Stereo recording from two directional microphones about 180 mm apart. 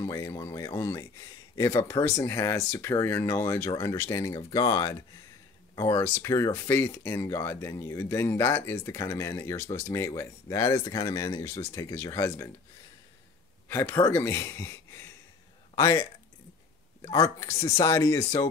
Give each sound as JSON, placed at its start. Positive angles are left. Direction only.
{"t": 0.0, "sound": "speech", "side_deg": 15}
{"t": 13.7, "sound": "speech", "side_deg": 15}